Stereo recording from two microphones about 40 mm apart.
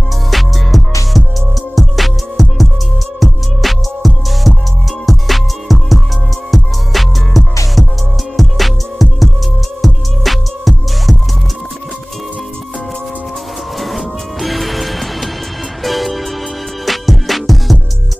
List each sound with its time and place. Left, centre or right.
0.3 s music: centre
13.7 s music: centre